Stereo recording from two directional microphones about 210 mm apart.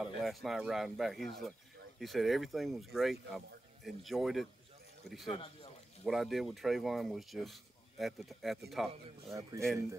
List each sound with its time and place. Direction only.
0.0 s speech: centre (ahead or behind)
5.3 s speech: 25° left (ahead or behind)
6.0 s speech: centre (ahead or behind)
9.4 s speech: 15° right (ahead or behind)